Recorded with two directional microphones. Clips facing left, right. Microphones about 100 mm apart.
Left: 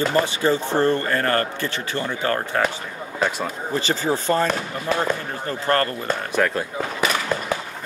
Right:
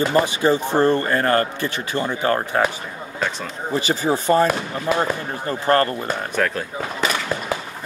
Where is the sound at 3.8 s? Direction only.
15° right (ahead or behind).